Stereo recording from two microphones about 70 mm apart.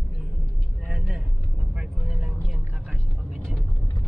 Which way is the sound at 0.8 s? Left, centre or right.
Centre.